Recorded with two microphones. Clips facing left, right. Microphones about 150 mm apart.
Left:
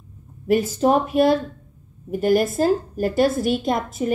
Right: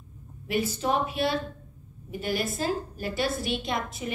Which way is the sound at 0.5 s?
45° left (ahead or behind).